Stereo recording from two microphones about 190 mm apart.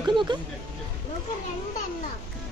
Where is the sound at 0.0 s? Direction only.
25° right (ahead or behind).